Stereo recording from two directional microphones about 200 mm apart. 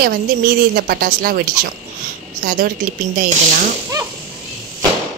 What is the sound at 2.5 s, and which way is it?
Speech, 45° right (ahead or behind).